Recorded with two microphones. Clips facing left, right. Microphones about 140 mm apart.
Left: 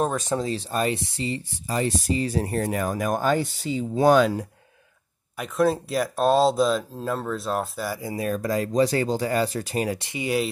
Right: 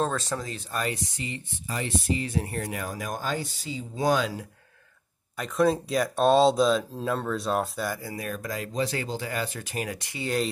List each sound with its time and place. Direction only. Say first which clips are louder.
0.0 s speech: left 4 dB; 15° left (ahead or behind); by 4.3 s 60° left (ahead or behind)
5.4 s speech: left 1 dB; centre (ahead or behind)
8.0 s speech: left 6 dB; 25° left (ahead or behind)
8.3 s speech: left 10 dB; 35° left (ahead or behind)
10.1 s speech: left 2 dB; 10° left (ahead or behind)